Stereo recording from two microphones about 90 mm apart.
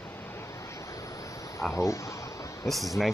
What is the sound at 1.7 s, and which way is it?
Speech, 35° left (ahead or behind).